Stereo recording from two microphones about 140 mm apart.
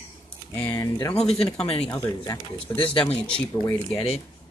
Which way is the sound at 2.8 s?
40° left (ahead or behind).